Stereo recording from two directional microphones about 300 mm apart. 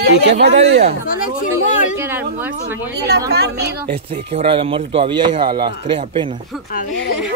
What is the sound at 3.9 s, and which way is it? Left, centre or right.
Speech, centre.